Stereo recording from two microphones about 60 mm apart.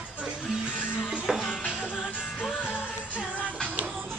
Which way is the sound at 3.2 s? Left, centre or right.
Left.